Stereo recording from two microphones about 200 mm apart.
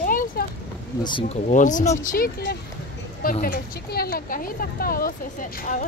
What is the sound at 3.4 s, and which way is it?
Speech, 50° left (ahead or behind).